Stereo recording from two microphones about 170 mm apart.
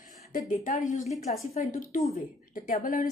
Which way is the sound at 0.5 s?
50° left (ahead or behind).